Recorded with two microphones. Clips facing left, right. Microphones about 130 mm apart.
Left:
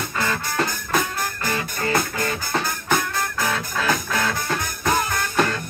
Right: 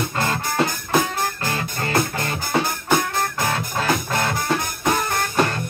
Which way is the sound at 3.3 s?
30° right (ahead or behind).